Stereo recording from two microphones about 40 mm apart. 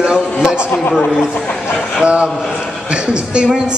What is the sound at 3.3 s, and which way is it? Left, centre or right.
Speech, centre.